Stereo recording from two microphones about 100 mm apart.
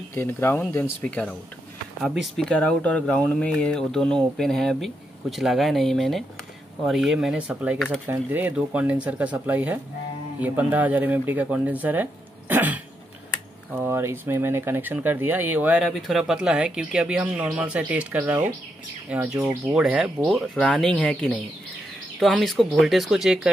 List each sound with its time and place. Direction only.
0.1 s speech: 25° left (ahead or behind)
1.0 s speech: 10° left (ahead or behind); by 15.8 s 20° right (ahead or behind)
15.8 s speech: 5° right (ahead or behind)
22.4 s speech: centre (ahead or behind)